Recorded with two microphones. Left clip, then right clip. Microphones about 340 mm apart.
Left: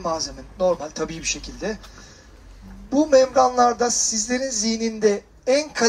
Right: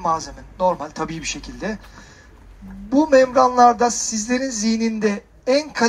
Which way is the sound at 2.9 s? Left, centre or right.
Right.